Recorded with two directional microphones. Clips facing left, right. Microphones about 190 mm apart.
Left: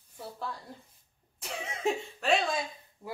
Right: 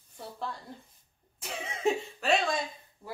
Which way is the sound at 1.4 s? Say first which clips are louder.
Right 1 dB; centre (ahead or behind).